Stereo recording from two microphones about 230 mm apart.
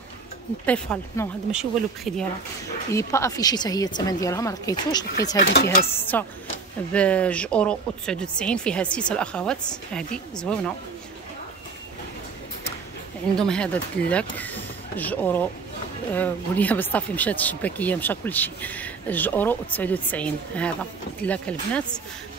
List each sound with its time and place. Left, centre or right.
0.7 s speech: centre
1.5 s speech: centre
2.9 s speech: centre
5.5 s chopping: left
5.9 s speech: centre
13.4 s speech: centre